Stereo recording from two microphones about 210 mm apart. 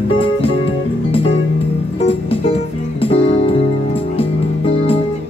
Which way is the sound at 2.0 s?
30° left (ahead or behind).